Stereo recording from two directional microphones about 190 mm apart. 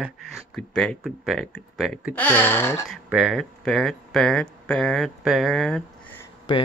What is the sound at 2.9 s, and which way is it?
Speech, 5° right (ahead or behind).